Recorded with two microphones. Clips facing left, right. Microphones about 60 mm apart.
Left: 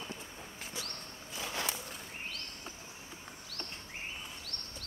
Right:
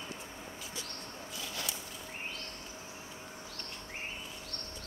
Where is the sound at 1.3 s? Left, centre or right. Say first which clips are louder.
Left 4 dB; left.